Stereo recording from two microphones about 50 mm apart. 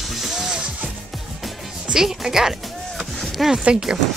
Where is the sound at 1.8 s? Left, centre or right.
Centre.